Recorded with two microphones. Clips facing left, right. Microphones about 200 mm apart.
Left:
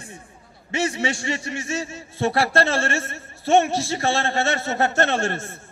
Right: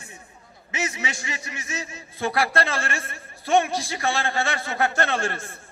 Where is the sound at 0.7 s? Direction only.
30° left (ahead or behind).